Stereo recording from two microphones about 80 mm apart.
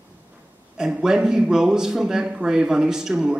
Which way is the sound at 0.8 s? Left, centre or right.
Centre.